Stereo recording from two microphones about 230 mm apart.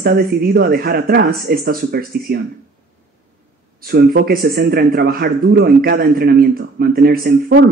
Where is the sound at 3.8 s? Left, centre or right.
Right.